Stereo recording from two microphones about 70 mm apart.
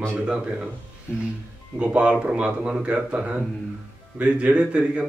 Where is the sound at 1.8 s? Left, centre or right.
Centre.